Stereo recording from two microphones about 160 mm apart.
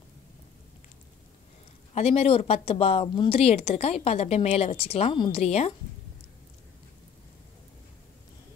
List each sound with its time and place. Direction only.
2.0 s a woman's voice: 40° left (ahead or behind)